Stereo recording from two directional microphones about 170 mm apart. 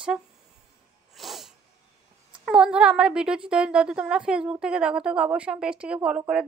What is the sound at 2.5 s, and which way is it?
A woman's voice, 5° right (ahead or behind).